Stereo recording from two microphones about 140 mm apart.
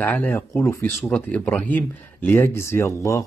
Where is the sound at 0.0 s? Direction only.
10° left (ahead or behind).